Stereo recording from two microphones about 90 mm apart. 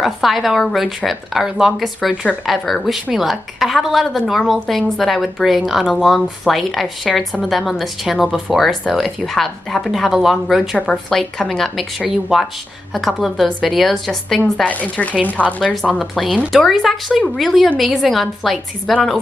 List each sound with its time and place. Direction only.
0.0 s a woman's voice: centre (ahead or behind)
14.4 s a woman's voice: 15° left (ahead or behind)
15.6 s a woman's voice: centre (ahead or behind)